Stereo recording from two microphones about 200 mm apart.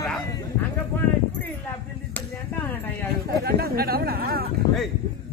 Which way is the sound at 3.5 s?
50° right (ahead or behind).